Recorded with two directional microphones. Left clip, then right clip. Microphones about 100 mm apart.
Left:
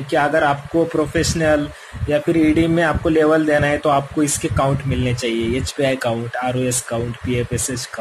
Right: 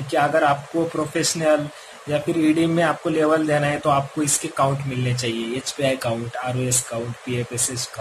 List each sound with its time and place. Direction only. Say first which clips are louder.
0.3 s speech: left 2 dB; 45° left (ahead or behind)
2.8 s speech: left 4 dB; 50° left (ahead or behind)